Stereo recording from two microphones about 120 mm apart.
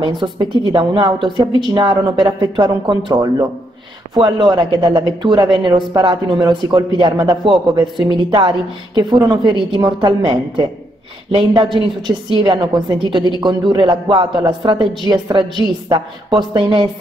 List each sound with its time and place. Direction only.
0.0 s a woman's voice: 40° right (ahead or behind)